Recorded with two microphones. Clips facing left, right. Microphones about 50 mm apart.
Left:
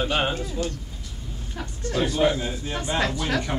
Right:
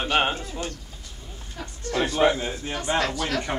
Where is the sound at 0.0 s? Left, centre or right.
Right.